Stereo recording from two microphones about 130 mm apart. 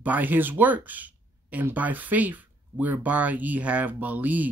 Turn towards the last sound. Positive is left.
turn(degrees=-10)  # may be behind; listen again after turning